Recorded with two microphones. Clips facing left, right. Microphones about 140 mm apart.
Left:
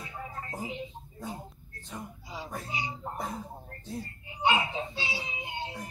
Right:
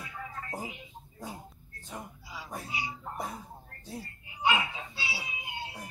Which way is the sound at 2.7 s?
25° left (ahead or behind).